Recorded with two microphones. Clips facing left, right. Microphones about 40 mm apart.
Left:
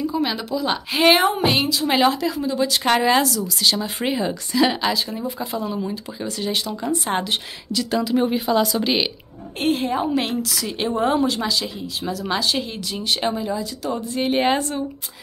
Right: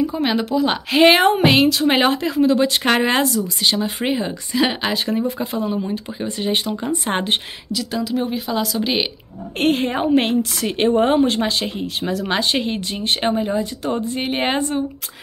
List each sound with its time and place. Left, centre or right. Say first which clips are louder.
0.0 s a woman's voice: right 3 dB; right
1.2 s a woman's voice: right 5 dB; right
3.2 s speech: right 1 dB; right
4.9 s a woman's voice: right 5 dB; right
5.9 s speech: right 3 dB; right
7.1 s a woman's voice: right 4 dB; right
7.7 s speech: left 2 dB; centre
9.6 s a woman's voice: right 3 dB; right
14.3 s speech: left 1 dB; right